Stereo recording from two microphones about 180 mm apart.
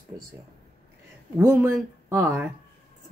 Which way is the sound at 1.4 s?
15° right (ahead or behind).